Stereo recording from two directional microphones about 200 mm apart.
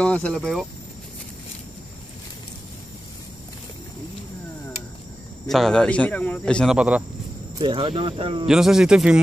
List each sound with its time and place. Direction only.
0.0 s speech: 5° left (ahead or behind)
5.5 s speech: centre (ahead or behind)
7.5 s speech: 25° right (ahead or behind)
8.5 s speech: 5° right (ahead or behind)